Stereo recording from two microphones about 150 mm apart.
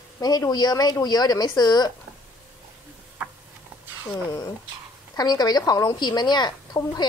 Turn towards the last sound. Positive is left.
turn(degrees=30)  # may be behind; listen again after turning